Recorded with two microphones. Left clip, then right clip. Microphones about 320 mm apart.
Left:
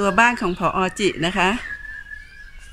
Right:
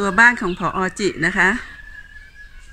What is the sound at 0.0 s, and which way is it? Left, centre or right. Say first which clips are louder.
Speech: right 3 dB; centre.